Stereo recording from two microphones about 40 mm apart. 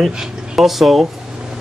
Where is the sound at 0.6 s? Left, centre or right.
Centre.